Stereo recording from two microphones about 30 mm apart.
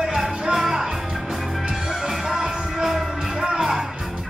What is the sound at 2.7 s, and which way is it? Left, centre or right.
Music, centre.